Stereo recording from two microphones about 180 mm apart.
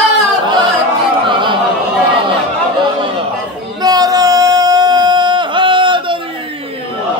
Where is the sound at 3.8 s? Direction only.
20° right (ahead or behind).